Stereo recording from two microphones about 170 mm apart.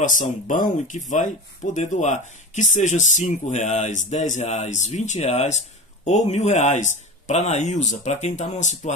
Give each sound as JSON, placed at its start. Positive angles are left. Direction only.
{"t": 0.0, "sound": "speech", "side_deg": 50}